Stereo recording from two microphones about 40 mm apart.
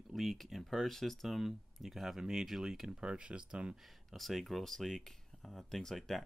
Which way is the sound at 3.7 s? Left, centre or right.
Centre.